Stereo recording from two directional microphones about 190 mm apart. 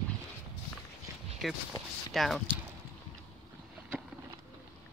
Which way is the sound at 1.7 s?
25° left (ahead or behind).